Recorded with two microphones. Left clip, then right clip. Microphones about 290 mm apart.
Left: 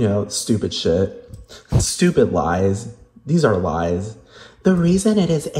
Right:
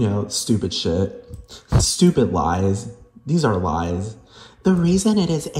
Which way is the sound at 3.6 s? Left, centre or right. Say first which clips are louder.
Left 2 dB; centre.